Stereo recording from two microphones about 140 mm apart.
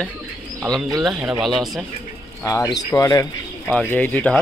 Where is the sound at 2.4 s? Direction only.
25° left (ahead or behind).